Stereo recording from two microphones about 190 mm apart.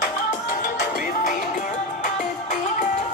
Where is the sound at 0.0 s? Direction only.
45° left (ahead or behind).